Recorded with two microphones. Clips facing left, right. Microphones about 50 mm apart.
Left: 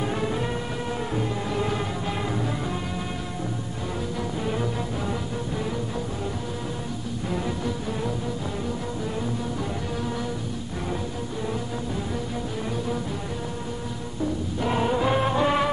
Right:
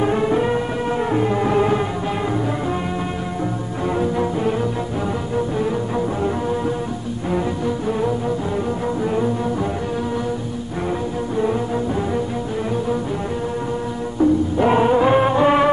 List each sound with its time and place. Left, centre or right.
0.0 s music: right
1.1 s music: right
4.0 s music: right
7.2 s music: right
14.6 s music: right